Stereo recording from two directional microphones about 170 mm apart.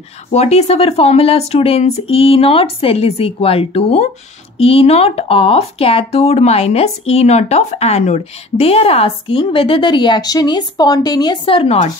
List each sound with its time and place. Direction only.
0.3 s speech: 40° left (ahead or behind)